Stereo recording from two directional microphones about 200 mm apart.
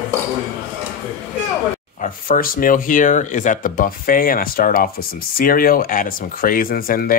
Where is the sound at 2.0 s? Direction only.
45° left (ahead or behind).